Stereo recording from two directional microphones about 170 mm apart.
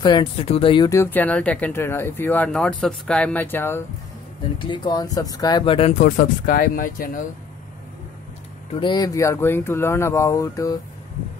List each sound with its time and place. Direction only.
0.0 s speech: 30° left (ahead or behind); by 3.8 s 15° left (ahead or behind)
4.6 s speech: 25° left (ahead or behind)
6.0 s speech: 55° left (ahead or behind)
8.7 s speech: 25° left (ahead or behind)